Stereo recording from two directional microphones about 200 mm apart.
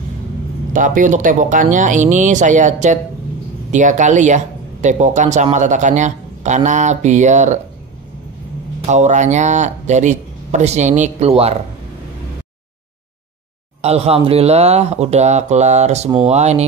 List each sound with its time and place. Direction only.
0.7 s speech: 40° right (ahead or behind)
8.8 s speech: 35° right (ahead or behind)
13.7 s speech: 30° right (ahead or behind)